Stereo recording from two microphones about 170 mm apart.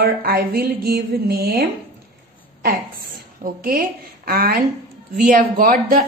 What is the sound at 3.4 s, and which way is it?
Speech, 60° right (ahead or behind).